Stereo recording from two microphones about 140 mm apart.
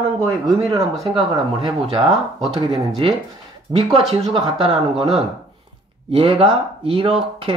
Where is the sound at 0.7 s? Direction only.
45° right (ahead or behind).